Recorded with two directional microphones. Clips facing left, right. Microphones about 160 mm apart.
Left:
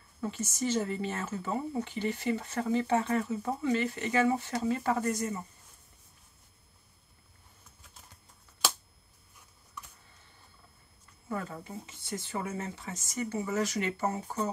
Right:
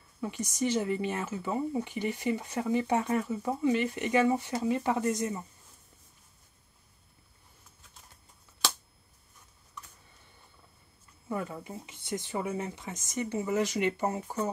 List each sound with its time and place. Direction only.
0.2 s speech: 15° right (ahead or behind)
11.2 s speech: 15° right (ahead or behind)